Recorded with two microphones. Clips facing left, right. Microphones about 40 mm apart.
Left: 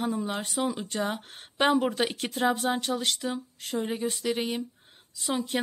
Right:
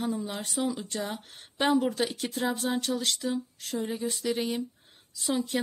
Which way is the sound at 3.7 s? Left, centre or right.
Left.